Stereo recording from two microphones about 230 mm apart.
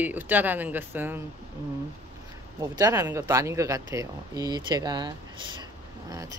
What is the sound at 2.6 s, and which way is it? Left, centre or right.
Speech, centre.